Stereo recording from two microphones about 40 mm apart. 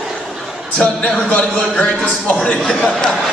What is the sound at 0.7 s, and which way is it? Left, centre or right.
Speech, left.